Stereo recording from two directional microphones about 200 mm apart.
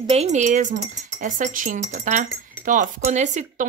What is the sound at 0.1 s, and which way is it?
A woman's voice, 35° right (ahead or behind).